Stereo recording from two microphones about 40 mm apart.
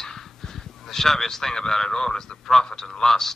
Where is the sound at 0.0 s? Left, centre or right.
Centre.